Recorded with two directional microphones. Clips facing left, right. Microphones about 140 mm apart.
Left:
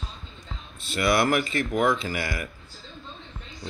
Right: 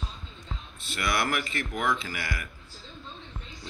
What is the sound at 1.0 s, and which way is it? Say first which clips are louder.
Speech: left 7 dB; 30° left (ahead or behind).